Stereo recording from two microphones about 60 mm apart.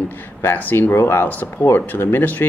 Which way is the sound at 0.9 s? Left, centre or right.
Left.